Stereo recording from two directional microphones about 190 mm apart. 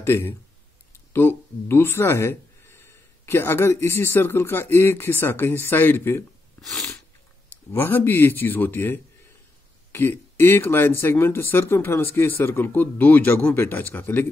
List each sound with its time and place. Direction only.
0.0 s speech: 15° left (ahead or behind)
6.6 s sneeze: centre (ahead or behind)
7.7 s speech: 10° left (ahead or behind)